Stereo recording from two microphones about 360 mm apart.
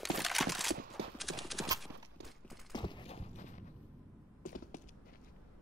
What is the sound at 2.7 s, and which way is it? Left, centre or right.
Clip-clop, centre.